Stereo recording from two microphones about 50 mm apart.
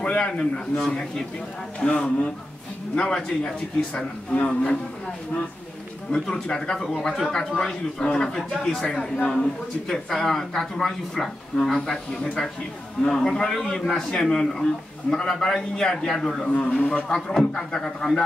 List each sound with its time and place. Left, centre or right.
0.0 s speech: centre
1.9 s a man's voice: left
3.0 s speech: centre
3.9 s a man's voice: left
6.1 s speech: centre
16.4 s a man's voice: left
16.7 s a man's voice: centre